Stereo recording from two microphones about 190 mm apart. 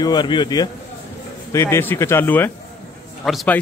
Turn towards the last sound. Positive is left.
turn(degrees=5)  # may be behind; listen again after turning